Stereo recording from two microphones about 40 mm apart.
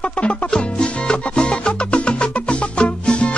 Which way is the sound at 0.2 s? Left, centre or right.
Left.